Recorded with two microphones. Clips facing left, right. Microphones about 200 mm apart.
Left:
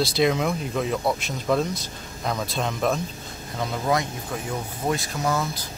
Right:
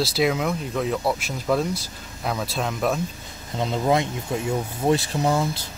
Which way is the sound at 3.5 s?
20° right (ahead or behind).